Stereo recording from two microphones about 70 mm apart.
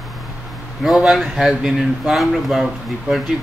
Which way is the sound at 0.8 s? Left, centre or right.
Centre.